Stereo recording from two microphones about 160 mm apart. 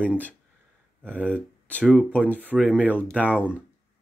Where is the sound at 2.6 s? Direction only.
5° left (ahead or behind).